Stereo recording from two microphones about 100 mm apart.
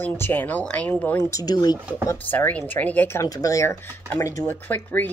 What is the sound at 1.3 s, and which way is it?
Speech, 40° left (ahead or behind).